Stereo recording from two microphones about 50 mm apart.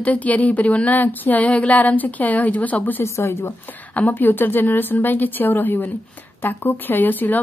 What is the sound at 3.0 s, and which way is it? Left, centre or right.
Speech, left.